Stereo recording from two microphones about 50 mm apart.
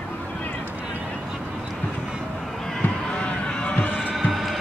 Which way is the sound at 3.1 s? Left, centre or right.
Left.